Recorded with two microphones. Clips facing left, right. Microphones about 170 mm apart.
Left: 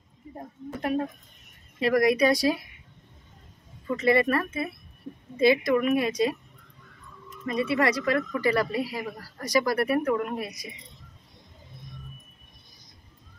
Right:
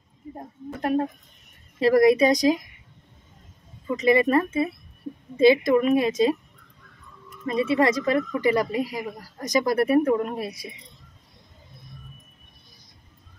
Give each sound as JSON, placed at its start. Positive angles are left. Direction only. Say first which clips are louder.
{"t": 1.8, "sound": "speech", "louder": "right 5 dB", "side_deg": -30}
{"t": 3.9, "sound": "speech", "louder": "right 3 dB", "side_deg": -15}
{"t": 7.4, "sound": "speech", "louder": "right 3 dB", "side_deg": -25}